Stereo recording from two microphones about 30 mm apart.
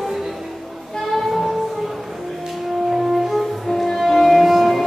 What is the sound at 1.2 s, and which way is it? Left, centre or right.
Music, centre.